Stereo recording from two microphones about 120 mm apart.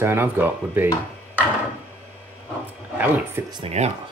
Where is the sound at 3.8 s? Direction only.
70° right (ahead or behind).